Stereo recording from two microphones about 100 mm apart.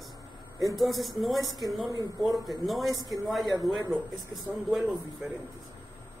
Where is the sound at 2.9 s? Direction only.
35° right (ahead or behind).